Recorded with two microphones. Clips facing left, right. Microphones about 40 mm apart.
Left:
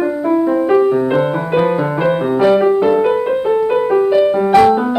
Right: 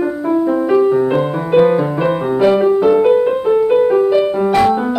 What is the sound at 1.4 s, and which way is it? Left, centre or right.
Music, centre.